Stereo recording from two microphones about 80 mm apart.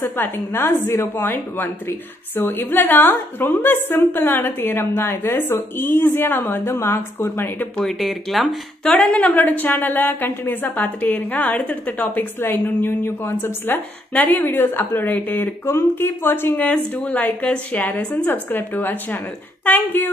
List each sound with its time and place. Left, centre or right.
0.0 s a woman's voice: left
7.7 s speech: centre
8.9 s a woman's voice: centre